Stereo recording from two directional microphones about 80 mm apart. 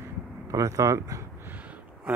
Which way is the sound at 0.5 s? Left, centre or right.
Right.